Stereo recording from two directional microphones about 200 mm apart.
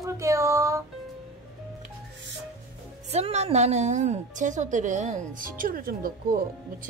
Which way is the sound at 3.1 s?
30° right (ahead or behind).